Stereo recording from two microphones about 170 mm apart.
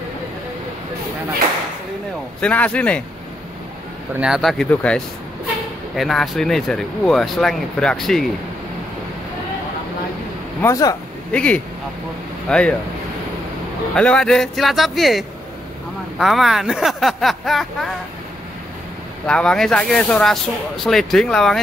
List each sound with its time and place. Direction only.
2.4 s speech: 10° left (ahead or behind)
4.1 s speech: 5° right (ahead or behind)
10.6 s speech: 20° left (ahead or behind)
11.3 s speech: 5° left (ahead or behind)
13.9 s speech: 5° left (ahead or behind)
19.2 s speech: 5° left (ahead or behind)